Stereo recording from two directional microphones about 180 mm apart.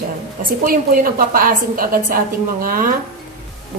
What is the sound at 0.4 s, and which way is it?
A woman's voice, 50° right (ahead or behind).